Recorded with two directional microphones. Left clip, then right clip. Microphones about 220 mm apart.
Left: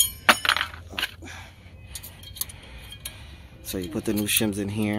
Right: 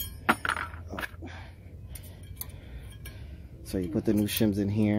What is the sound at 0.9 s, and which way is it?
Dog, 5° right (ahead or behind).